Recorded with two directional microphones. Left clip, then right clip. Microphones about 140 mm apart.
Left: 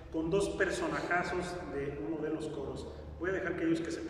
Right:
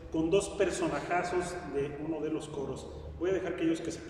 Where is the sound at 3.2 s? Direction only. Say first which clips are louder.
Right 3 dB; 15° right (ahead or behind).